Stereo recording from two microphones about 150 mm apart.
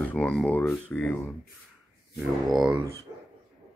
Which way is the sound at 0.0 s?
10° left (ahead or behind).